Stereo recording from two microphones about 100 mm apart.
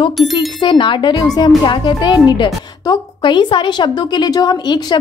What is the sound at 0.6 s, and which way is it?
A woman's voice, 55° left (ahead or behind).